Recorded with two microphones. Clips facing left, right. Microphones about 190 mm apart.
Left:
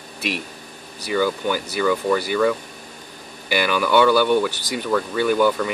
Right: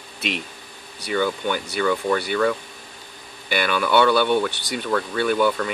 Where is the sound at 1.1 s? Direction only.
5° left (ahead or behind).